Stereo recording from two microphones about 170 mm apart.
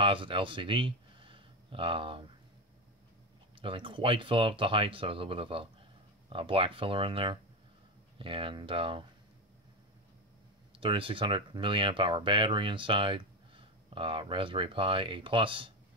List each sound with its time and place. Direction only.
0.0 s speech: 30° right (ahead or behind)
3.6 s speech: 30° right (ahead or behind)
10.7 s speech: 30° right (ahead or behind)